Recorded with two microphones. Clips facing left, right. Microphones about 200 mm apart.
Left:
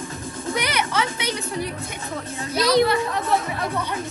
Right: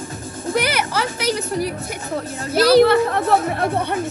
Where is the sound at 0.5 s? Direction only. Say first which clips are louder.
Right 4 dB; 5° right (ahead or behind).